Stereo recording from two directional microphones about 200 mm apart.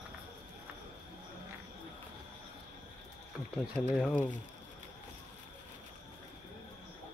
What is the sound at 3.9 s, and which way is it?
Speech, 5° left (ahead or behind).